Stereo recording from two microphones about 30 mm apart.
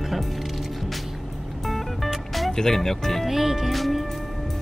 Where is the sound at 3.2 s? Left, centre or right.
Centre.